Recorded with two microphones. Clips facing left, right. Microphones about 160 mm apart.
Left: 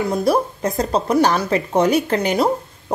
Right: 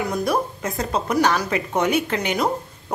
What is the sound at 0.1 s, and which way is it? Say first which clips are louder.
Speech: left 4 dB; 30° left (ahead or behind).